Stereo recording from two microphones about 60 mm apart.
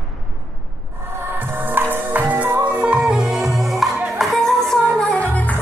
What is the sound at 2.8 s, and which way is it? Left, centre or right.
Music, centre.